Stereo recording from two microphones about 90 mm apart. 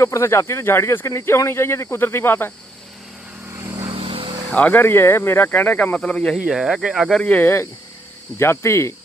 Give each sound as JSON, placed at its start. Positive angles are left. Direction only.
{"t": 0.0, "sound": "speech", "side_deg": 30}
{"t": 3.9, "sound": "vehicle", "side_deg": -80}
{"t": 4.5, "sound": "speech", "side_deg": 15}
{"t": 6.3, "sound": "speech", "side_deg": -5}
{"t": 7.2, "sound": "speech", "side_deg": 20}